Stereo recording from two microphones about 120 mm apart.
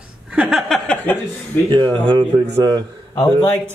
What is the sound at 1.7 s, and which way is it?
Speech, 40° right (ahead or behind).